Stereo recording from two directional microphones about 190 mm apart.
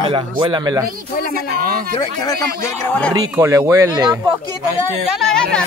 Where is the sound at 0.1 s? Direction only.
25° right (ahead or behind).